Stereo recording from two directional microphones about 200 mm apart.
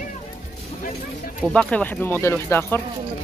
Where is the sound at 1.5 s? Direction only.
5° left (ahead or behind).